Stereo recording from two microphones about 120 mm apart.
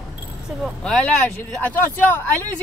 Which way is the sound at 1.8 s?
15° left (ahead or behind).